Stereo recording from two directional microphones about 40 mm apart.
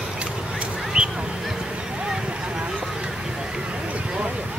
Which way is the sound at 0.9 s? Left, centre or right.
Right.